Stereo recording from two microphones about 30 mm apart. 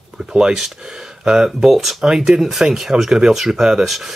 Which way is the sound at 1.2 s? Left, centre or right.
Right.